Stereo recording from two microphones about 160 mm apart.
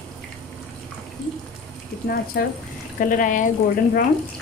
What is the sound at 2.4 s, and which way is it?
Speech, 80° left.